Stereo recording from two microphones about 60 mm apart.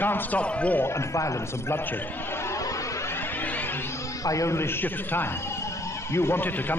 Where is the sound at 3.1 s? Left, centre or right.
Left.